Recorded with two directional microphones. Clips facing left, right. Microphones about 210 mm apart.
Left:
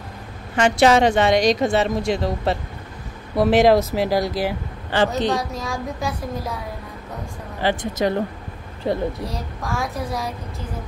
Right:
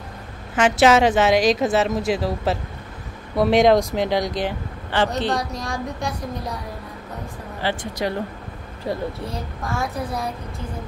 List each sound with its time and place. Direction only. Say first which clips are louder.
0.6 s a woman's voice: even; 5° right (ahead or behind)
7.6 s speech: left 4 dB; 20° left (ahead or behind)
9.3 s a woman's voice: even; centre (ahead or behind)